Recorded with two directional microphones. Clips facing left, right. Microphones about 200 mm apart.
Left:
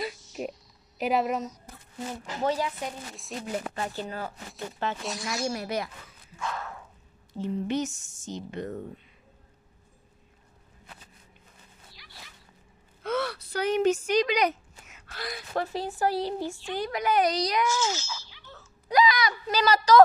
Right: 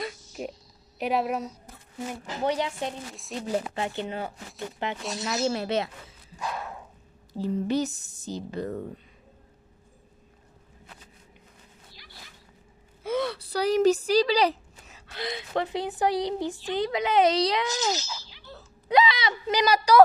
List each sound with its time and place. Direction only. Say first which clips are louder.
0.0 s a sound: left 1 dB; centre (ahead or behind)
2.4 s speech: right 1 dB; 20° right (ahead or behind)
3.3 s speech: right 2 dB; centre (ahead or behind)
3.7 s a woman's voice: right 3 dB; 25° right (ahead or behind)
7.3 s a woman's voice: right 3 dB; 35° right (ahead or behind)
13.0 s gasp: right 2 dB; 10° right (ahead or behind)
13.3 s a woman's voice: right 2 dB; 35° right (ahead or behind)
15.1 s speech: right 2 dB; 20° right (ahead or behind)
18.4 s wail: right 4 dB; 35° right (ahead or behind)
18.9 s speech: right 1 dB; 25° right (ahead or behind)
19.6 s a woman's voice: left 1 dB; 10° right (ahead or behind)